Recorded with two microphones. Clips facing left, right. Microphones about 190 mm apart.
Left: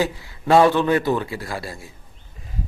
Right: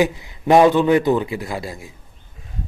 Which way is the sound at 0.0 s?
15° right (ahead or behind).